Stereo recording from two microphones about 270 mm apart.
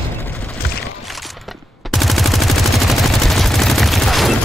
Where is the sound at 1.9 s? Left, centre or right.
Centre.